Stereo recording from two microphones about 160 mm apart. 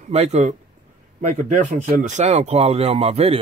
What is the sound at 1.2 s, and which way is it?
Speech, 50° right (ahead or behind).